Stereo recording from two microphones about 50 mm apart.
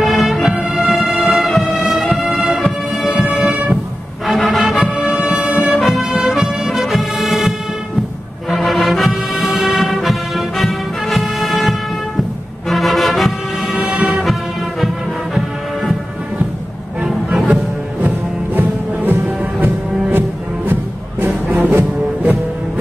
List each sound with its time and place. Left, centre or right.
0.0 s music: centre
8.6 s music: centre
17.0 s music: centre
18.6 s music: right